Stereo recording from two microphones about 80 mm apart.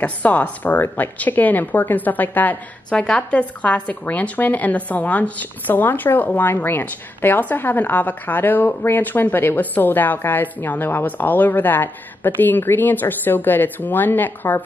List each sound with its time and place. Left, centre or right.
0.0 s a woman's voice: centre